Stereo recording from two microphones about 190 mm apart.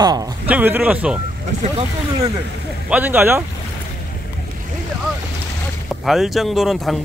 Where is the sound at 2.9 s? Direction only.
10° right (ahead or behind).